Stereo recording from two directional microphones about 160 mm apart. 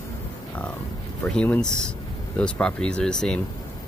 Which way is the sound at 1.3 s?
5° left (ahead or behind).